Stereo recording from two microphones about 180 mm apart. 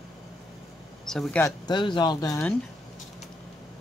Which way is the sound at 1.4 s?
25° left (ahead or behind).